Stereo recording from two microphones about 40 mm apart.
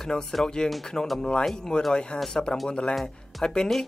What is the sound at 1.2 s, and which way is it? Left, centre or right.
Speech, left.